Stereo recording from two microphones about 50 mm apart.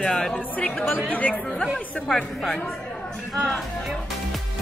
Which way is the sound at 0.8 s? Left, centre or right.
Left.